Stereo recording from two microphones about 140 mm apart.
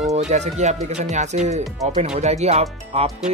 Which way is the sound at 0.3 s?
55° right (ahead or behind).